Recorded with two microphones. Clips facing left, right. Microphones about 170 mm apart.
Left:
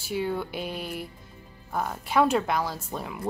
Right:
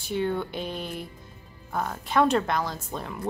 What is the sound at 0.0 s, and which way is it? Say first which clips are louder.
Speech: right 1 dB; 5° left (ahead or behind).